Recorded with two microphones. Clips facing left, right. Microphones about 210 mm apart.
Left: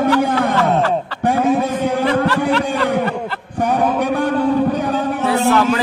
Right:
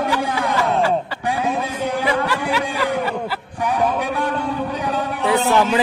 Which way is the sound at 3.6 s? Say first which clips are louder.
Left 3 dB; 45° left (ahead or behind).